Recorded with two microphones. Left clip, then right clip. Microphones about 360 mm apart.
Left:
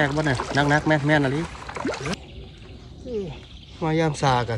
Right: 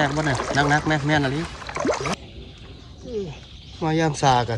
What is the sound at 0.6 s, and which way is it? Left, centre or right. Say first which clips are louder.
Speech: left 1 dB; centre.